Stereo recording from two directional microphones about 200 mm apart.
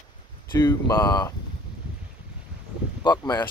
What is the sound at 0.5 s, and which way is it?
Speech, 15° left (ahead or behind).